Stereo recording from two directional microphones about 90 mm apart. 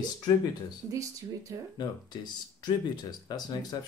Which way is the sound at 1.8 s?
50° left (ahead or behind).